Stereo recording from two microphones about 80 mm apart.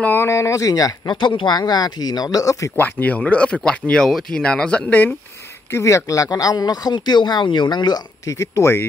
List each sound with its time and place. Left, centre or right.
0.0 s speech: left
1.0 s speech: left
1.6 s speech: left
2.8 s speech: left
5.7 s speech: left
8.3 s speech: left